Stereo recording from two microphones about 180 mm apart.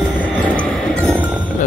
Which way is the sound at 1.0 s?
15° right (ahead or behind).